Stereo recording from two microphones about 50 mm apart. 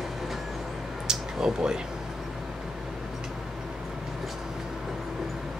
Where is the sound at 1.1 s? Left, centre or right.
Centre.